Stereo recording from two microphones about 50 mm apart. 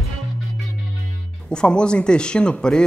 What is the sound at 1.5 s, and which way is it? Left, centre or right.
Speech, centre.